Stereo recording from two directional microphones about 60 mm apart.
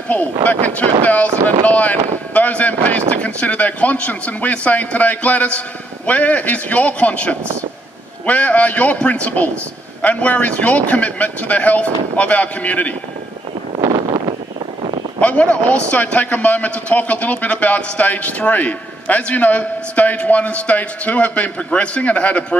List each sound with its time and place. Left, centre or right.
0.1 s a man's voice: left
15.1 s a man's voice: left